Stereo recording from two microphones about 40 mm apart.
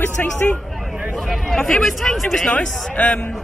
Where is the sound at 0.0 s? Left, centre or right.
Left.